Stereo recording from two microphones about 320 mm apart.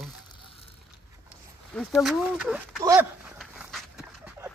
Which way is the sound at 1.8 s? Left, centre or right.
Centre.